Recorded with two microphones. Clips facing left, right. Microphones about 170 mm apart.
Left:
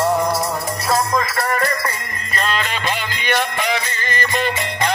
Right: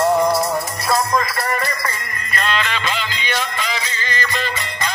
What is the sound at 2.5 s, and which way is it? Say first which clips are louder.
Music: right 1 dB; 45° left (ahead or behind).